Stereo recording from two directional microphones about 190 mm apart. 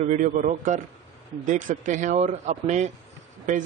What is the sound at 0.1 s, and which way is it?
A man's voice, 40° right (ahead or behind).